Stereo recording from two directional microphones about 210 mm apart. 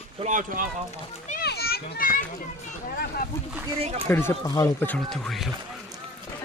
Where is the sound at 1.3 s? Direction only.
50° left (ahead or behind).